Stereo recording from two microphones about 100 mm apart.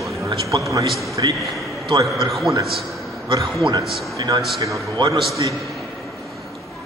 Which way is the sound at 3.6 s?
55° right (ahead or behind).